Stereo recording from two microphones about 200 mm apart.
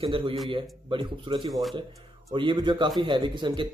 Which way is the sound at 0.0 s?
25° right (ahead or behind).